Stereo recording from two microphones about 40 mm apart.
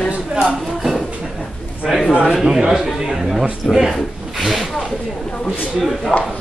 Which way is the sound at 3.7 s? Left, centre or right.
Centre.